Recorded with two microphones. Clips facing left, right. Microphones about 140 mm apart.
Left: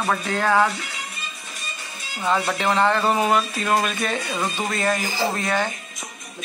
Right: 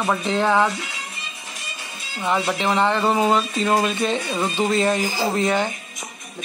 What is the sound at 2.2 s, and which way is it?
Speech, 15° right (ahead or behind).